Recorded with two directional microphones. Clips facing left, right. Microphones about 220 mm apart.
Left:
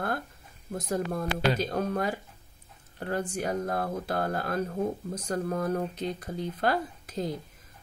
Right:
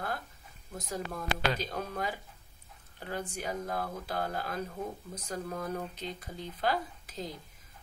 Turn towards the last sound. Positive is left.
turn(degrees=55)  # may be behind; listen again after turning